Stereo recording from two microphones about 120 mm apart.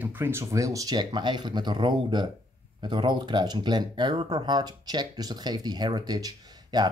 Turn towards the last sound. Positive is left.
turn(degrees=-35)  # may be behind; listen again after turning